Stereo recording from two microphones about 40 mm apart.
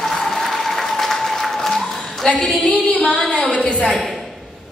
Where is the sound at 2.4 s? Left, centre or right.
Left.